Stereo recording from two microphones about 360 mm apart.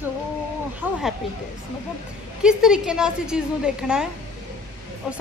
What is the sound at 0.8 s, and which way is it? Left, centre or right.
Speech, centre.